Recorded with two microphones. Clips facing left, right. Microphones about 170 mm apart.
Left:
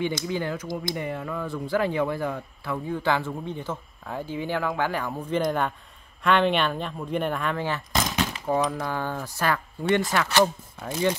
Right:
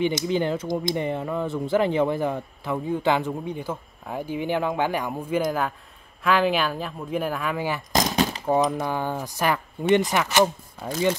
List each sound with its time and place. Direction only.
0.0 s speech: 20° right (ahead or behind)
7.9 s a sound: 40° right (ahead or behind)
8.6 s speech: 20° right (ahead or behind)